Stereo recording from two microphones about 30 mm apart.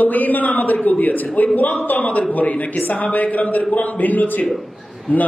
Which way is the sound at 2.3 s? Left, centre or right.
Left.